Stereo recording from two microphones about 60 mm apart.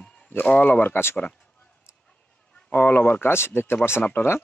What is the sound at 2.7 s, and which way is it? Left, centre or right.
Speech, left.